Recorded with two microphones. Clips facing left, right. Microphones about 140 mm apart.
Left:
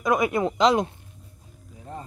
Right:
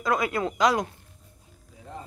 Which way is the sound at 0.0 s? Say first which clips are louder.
Left 3 dB; 20° left (ahead or behind).